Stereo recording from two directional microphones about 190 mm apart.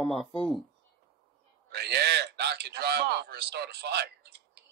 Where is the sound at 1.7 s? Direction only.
60° right (ahead or behind).